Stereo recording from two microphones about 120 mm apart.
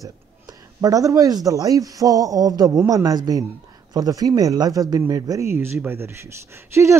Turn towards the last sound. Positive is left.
turn(degrees=-25)  # may be behind; listen again after turning